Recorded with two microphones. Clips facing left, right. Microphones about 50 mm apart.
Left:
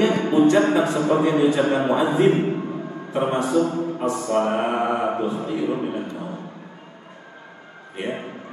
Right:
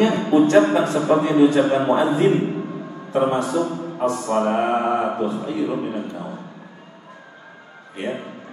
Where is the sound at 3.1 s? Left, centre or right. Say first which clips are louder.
Right 3 dB; left.